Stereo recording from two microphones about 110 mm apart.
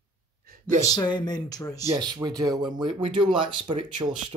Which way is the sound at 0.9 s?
40° left (ahead or behind).